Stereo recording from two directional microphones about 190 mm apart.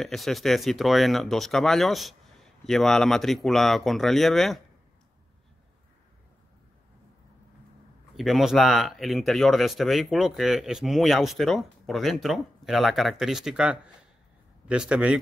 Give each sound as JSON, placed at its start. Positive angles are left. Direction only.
{"t": 0.0, "sound": "speech", "side_deg": 0}
{"t": 8.2, "sound": "speech", "side_deg": 0}